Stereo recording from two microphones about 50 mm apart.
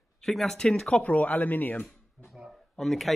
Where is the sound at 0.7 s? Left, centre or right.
Centre.